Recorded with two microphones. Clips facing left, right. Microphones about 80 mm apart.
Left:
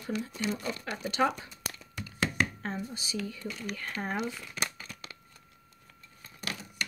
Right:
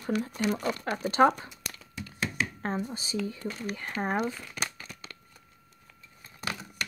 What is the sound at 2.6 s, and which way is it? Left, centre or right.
Speech, right.